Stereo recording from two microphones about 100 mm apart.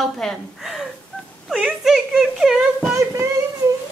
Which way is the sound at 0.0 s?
Centre (ahead or behind).